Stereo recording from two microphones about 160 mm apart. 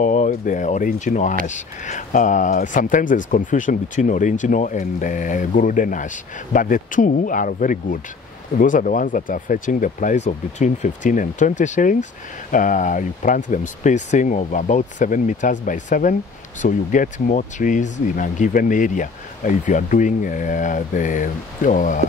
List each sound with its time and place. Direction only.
0.0 s speech: 50° left (ahead or behind)